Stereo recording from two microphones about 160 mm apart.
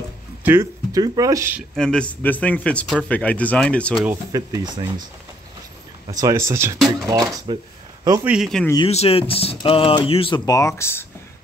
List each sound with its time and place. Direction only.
0.4 s speech: 15° right (ahead or behind)
1.8 s a man's voice: 5° left (ahead or behind)
4.3 s speech: 25° right (ahead or behind)
6.1 s a man's voice: 20° right (ahead or behind)
8.3 s speech: centre (ahead or behind)
8.8 s speech: 40° left (ahead or behind); by 11.1 s 15° left (ahead or behind)